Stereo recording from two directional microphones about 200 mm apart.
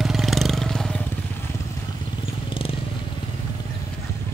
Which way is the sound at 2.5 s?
25° left (ahead or behind).